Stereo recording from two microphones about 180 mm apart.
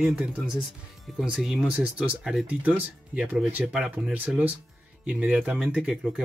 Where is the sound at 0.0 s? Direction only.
5° right (ahead or behind).